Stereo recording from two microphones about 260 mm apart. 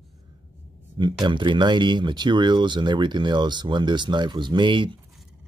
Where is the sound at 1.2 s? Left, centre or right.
Centre.